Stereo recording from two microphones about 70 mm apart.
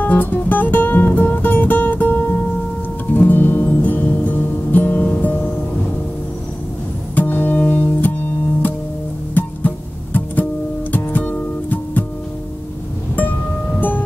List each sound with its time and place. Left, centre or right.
0.0 s music: left
7.2 s music: left
9.3 s music: left
13.7 s music: left